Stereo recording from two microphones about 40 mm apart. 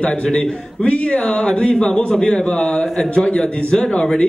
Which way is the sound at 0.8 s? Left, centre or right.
Left.